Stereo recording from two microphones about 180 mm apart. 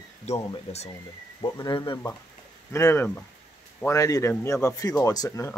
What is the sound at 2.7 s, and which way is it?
Speech, 15° left (ahead or behind).